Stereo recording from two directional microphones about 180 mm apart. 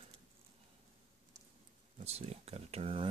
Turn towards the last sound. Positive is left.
turn(degrees=-30)  # may be behind; listen again after turning